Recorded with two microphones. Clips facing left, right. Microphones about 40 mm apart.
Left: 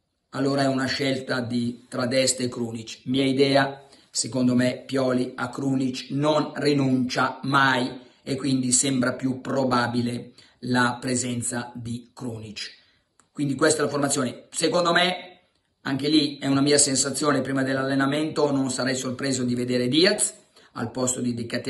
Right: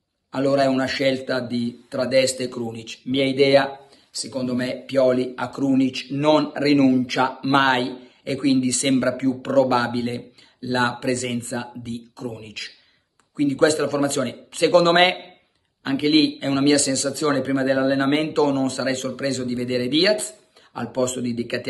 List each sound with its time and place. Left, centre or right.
0.3 s a man's voice: right
4.4 s speech: centre
4.8 s a man's voice: right
19.5 s a man's voice: right